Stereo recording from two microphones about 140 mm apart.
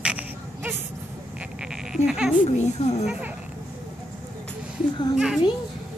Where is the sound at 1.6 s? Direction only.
5° right (ahead or behind).